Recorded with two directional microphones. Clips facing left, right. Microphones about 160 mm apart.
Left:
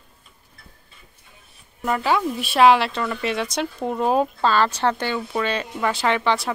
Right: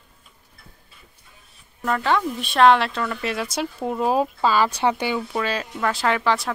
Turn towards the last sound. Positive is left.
turn(degrees=0)  # may be behind; listen again after turning